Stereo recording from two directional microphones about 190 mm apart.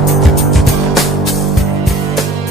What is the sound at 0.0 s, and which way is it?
Music, centre (ahead or behind).